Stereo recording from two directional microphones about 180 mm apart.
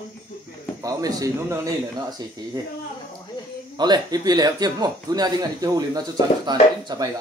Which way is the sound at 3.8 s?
20° right (ahead or behind).